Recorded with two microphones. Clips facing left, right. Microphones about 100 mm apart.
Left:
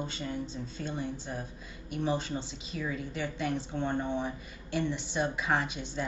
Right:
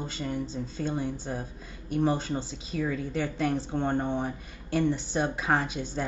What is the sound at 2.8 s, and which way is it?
Speech, 50° right (ahead or behind).